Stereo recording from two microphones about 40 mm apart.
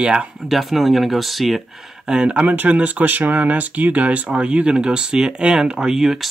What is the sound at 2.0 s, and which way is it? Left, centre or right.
Speech, centre.